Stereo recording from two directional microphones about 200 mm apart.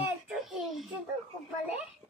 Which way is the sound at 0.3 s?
Centre (ahead or behind).